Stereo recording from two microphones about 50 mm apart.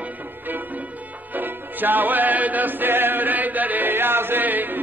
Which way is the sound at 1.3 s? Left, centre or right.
Right.